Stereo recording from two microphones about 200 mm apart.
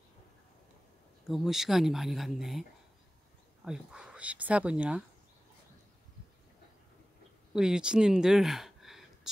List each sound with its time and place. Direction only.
1.2 s speech: centre (ahead or behind)
3.6 s speech: 5° right (ahead or behind)
7.5 s speech: 5° right (ahead or behind)